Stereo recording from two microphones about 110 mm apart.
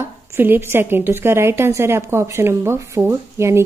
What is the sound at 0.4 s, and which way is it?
Speech, 20° right (ahead or behind).